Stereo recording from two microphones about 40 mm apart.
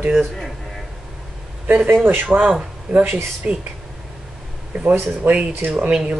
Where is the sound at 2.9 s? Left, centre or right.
Right.